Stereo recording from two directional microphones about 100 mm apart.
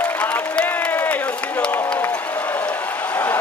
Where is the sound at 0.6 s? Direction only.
15° left (ahead or behind).